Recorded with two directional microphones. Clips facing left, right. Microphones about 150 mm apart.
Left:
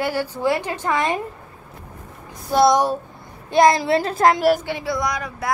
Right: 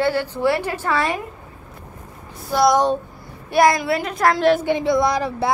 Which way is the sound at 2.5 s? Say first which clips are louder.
Even; 25° left (ahead or behind).